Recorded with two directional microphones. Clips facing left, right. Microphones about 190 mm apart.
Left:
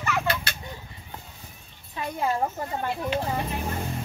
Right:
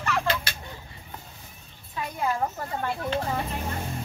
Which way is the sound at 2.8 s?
15° left (ahead or behind).